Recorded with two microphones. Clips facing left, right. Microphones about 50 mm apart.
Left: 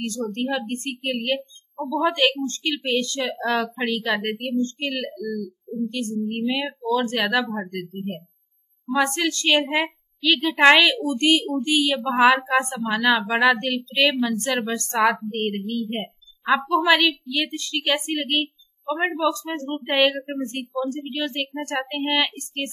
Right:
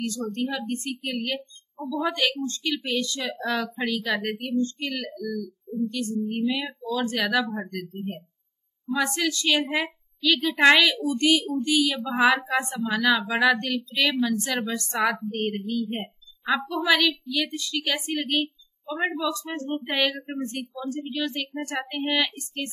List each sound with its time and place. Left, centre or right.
0.0 s a woman's voice: left
5.1 s a woman's voice: centre
5.9 s a woman's voice: left
15.0 s a woman's voice: left
18.9 s speech: centre
19.5 s a woman's voice: left